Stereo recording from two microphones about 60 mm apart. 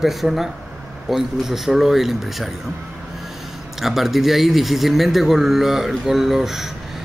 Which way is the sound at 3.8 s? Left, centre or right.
Centre.